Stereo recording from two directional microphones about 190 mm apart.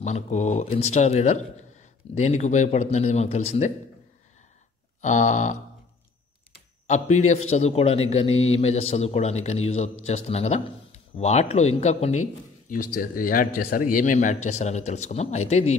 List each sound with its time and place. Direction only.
0.0 s a man's voice: 35° left (ahead or behind)
5.0 s a man's voice: 40° left (ahead or behind)
6.9 s a man's voice: 40° left (ahead or behind)
12.6 s a man's voice: 45° left (ahead or behind)